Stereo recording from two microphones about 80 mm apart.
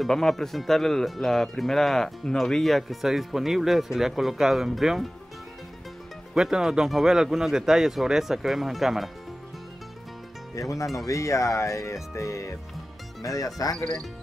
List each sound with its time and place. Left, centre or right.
0.0 s speech: centre
6.3 s speech: centre
10.5 s speech: left